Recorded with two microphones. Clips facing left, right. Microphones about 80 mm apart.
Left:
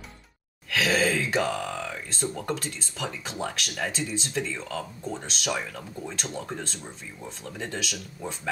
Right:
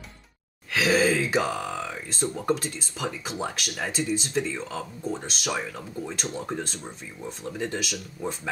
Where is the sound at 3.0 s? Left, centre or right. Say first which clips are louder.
Right 2 dB; centre.